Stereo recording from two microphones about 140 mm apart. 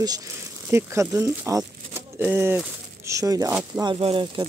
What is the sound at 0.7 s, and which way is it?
Speech, 20° right (ahead or behind).